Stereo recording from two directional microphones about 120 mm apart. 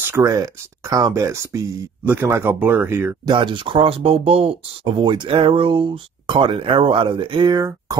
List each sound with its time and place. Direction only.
0.0 s speech: 25° right (ahead or behind)
3.3 s speech: 40° right (ahead or behind)